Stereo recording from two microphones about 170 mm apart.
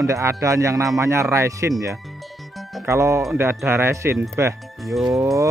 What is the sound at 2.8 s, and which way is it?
A man's voice, 15° right (ahead or behind).